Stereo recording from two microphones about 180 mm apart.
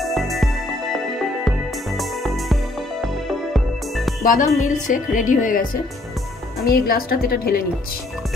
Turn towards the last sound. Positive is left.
turn(degrees=55)  # may be behind; listen again after turning